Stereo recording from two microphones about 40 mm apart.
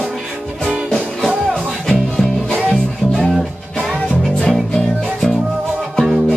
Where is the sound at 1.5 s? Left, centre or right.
Centre.